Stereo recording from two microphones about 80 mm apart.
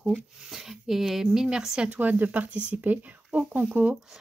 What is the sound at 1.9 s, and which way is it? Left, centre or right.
Speech, right.